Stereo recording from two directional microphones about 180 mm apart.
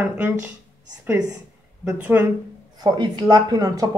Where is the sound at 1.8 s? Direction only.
10° right (ahead or behind).